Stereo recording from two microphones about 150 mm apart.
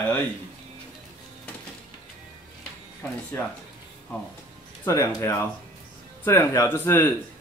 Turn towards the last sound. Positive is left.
turn(degrees=15)  # may be behind; listen again after turning